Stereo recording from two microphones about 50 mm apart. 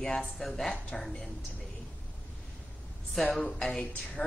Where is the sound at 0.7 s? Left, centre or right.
Centre.